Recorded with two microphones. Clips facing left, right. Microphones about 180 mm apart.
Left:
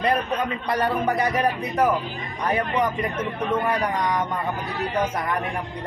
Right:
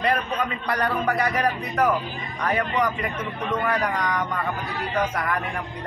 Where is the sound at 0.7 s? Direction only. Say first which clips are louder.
Left 2 dB; 25° left (ahead or behind).